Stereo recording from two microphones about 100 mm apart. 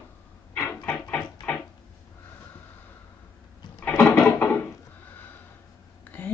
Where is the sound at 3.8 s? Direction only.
25° left (ahead or behind).